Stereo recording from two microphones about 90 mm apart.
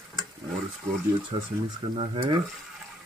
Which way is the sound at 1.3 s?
75° right (ahead or behind).